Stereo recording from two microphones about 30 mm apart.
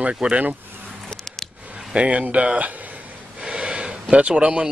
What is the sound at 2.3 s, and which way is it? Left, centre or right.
Speech, right.